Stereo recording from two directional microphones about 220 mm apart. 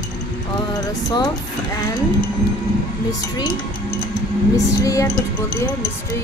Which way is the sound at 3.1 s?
20° left (ahead or behind).